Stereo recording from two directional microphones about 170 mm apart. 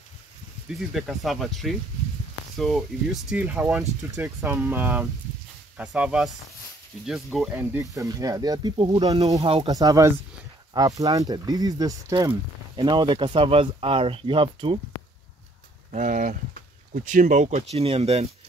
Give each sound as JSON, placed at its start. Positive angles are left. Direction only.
{"t": 0.7, "sound": "speech", "side_deg": 0}
{"t": 7.5, "sound": "speech", "side_deg": -15}
{"t": 15.9, "sound": "speech", "side_deg": -45}